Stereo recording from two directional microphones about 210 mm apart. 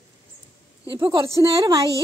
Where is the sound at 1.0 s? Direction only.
20° right (ahead or behind).